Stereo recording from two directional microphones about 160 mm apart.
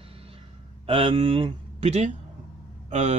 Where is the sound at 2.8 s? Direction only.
45° right (ahead or behind).